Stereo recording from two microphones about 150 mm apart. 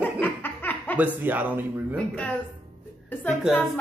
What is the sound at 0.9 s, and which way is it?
Speech, 10° right (ahead or behind).